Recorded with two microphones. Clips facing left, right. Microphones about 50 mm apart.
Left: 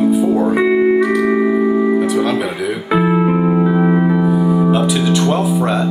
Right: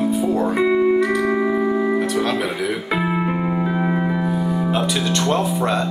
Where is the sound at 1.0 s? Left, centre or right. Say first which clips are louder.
Left 4 dB; centre.